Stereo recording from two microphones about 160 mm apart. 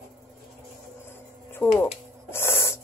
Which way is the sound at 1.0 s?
15° left (ahead or behind).